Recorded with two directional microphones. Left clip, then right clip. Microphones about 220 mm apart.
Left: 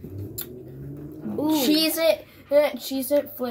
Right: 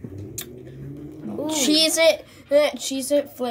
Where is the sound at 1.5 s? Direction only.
35° right (ahead or behind).